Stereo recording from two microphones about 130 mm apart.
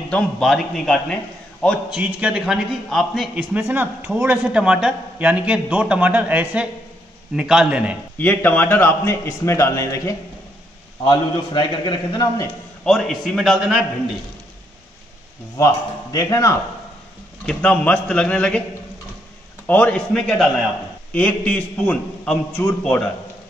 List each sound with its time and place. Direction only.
0.1 s a man's voice: centre (ahead or behind)
1.9 s a man's voice: 10° right (ahead or behind)
3.5 s speech: 15° right (ahead or behind)
8.2 s a man's voice: 15° left (ahead or behind)
11.1 s a man's voice: 35° left (ahead or behind)
12.8 s a man's voice: 5° left (ahead or behind)
15.5 s a man's voice: 25° left (ahead or behind)
17.5 s a man's voice: 10° left (ahead or behind)
19.6 s a man's voice: 15° left (ahead or behind)
22.6 s a man's voice: 20° left (ahead or behind)